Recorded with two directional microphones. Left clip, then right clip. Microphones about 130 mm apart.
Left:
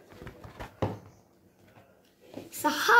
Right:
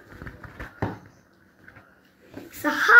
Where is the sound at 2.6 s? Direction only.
35° left (ahead or behind).